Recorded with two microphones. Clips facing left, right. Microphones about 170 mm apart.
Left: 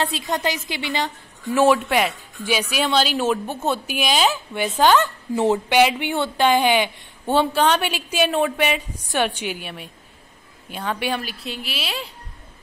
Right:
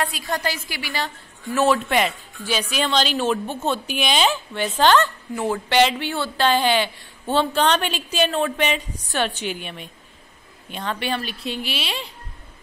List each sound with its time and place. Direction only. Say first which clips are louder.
0.0 s a woman's voice: left 2 dB; 25° left (ahead or behind)
5.3 s speech: left 7 dB; 25° left (ahead or behind)
5.7 s a woman's voice: left 1 dB; 10° left (ahead or behind)